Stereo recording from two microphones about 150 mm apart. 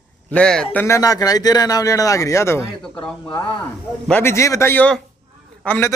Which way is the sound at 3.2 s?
30° left (ahead or behind).